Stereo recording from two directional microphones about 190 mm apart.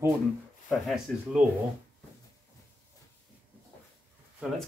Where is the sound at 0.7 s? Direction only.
Centre (ahead or behind).